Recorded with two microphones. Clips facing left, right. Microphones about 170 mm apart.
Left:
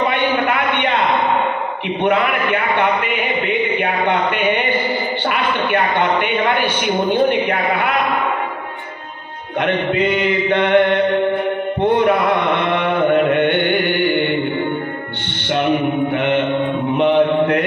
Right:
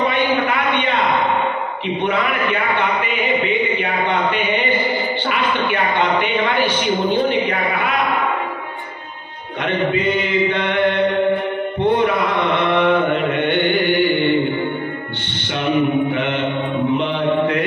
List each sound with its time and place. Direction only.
0.1 s a sound: 60° left (ahead or behind)
2.0 s a man's voice: 60° left (ahead or behind)
9.6 s a man's voice: 60° left (ahead or behind)
12.0 s carnatic music: 55° left (ahead or behind)
13.3 s music: 55° left (ahead or behind)
16.1 s mantra: 60° left (ahead or behind)